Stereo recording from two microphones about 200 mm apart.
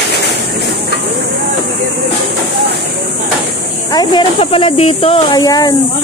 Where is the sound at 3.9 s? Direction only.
20° left (ahead or behind).